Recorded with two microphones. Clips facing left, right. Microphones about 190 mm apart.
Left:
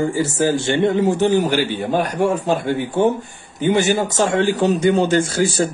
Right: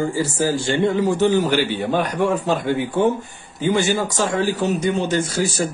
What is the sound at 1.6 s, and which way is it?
Speech, 45° left (ahead or behind).